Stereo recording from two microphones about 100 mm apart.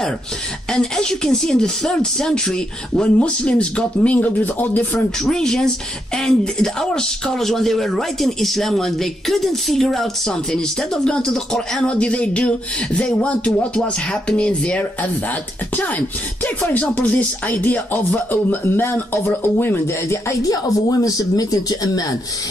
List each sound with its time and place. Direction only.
0.7 s speech: 5° left (ahead or behind)
5.2 s speech: 5° left (ahead or behind); by 22.0 s 40° left (ahead or behind)